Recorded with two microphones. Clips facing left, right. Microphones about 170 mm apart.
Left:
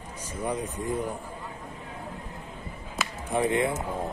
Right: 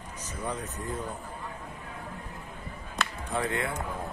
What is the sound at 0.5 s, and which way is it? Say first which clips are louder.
Speech: left 5 dB; 10° left (ahead or behind).